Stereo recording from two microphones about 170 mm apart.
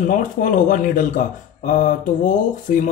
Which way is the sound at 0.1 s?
50° left (ahead or behind).